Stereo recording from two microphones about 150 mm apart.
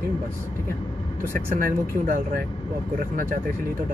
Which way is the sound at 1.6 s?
70° right (ahead or behind).